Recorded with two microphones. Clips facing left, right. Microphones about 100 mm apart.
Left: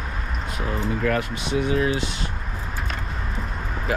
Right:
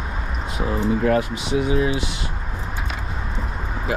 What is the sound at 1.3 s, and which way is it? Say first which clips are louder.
Speech: right 2 dB; 15° right (ahead or behind).